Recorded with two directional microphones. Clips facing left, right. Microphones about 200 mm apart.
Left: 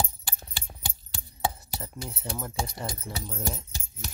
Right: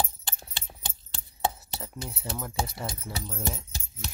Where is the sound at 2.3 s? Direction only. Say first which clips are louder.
Right 1 dB; centre (ahead or behind).